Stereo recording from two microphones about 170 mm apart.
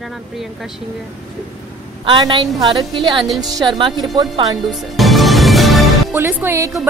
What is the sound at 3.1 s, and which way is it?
Speech, centre (ahead or behind).